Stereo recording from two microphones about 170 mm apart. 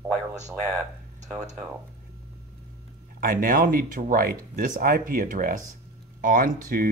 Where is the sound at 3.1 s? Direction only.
55° right (ahead or behind).